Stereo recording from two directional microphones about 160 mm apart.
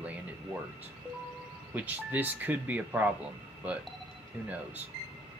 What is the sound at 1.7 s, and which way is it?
Speech, 10° right (ahead or behind).